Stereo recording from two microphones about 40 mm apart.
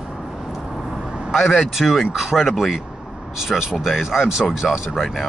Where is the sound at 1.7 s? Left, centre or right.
Centre.